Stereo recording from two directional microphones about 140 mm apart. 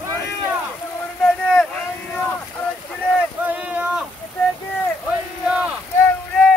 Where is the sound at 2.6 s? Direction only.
10° left (ahead or behind).